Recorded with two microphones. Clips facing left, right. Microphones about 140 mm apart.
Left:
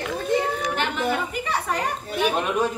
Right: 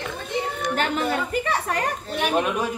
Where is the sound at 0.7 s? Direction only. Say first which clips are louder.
Right 5 dB; 40° right (ahead or behind).